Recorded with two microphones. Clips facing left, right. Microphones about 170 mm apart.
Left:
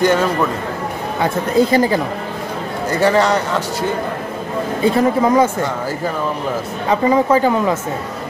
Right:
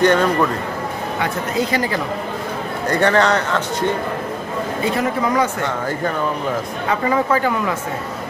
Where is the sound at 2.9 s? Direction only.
10° left (ahead or behind).